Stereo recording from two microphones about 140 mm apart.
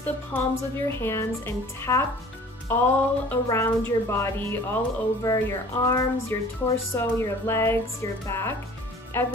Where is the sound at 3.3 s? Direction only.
20° left (ahead or behind).